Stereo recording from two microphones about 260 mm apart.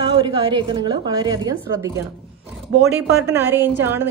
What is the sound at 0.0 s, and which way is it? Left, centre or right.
A woman's voice, centre.